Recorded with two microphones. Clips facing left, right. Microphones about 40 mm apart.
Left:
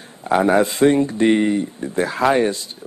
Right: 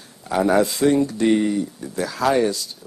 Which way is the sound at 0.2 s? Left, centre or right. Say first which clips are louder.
Left 2 dB; left.